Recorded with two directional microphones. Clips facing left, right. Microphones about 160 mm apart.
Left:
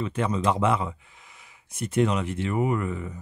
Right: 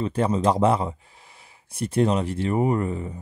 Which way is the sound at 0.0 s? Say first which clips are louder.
Right 4 dB; 35° right (ahead or behind).